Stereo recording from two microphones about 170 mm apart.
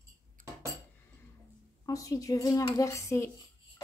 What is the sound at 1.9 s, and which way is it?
A woman's voice, 20° left (ahead or behind).